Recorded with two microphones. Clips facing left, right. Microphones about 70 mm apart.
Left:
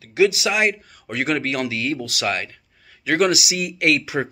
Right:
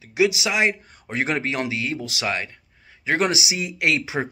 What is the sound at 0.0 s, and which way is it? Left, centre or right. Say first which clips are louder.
Speech: left 3 dB; centre.